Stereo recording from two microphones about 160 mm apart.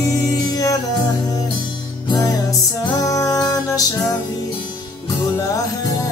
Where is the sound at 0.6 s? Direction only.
20° left (ahead or behind).